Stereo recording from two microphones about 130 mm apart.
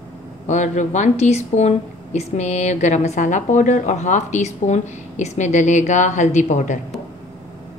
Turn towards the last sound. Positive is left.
turn(degrees=65)  # may be behind; listen again after turning